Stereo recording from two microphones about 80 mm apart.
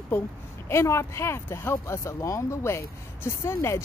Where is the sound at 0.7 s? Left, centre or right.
Left.